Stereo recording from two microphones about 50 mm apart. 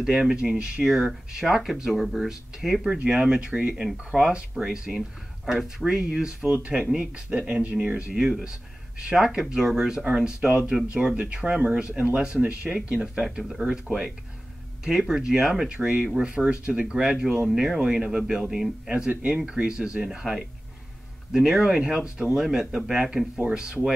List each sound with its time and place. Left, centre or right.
0.0 s speech: centre
3.0 s speech: right
10.4 s speech: right
14.9 s speech: centre
15.7 s speech: right
18.9 s speech: right